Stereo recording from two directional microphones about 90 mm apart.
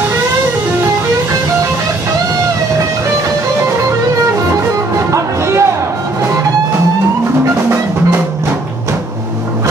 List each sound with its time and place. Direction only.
4.9 s music: 35° right (ahead or behind)